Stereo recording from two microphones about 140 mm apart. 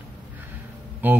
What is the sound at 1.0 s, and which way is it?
Speech, 15° right (ahead or behind).